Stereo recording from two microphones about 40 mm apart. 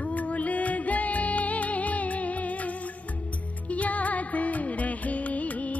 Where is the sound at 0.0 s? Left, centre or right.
Left.